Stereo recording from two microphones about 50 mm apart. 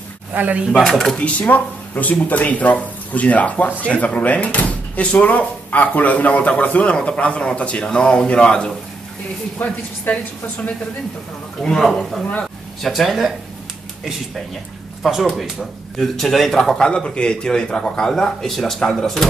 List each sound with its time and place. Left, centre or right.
0.3 s speech: right
0.7 s speech: centre
1.4 s speech: left; by 8.7 s centre
9.6 s speech: left
11.6 s speech: centre
12.8 s speech: centre
15.3 s a man's voice: centre